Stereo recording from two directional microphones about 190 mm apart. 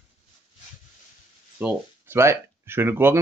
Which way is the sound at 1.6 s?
10° right (ahead or behind).